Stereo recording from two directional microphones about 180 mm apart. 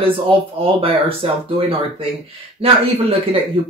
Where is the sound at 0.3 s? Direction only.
30° right (ahead or behind).